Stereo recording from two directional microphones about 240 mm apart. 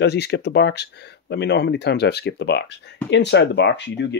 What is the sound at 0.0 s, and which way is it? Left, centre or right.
Speech, left.